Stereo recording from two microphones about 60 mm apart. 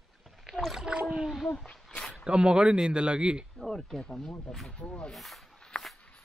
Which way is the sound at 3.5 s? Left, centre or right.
Centre.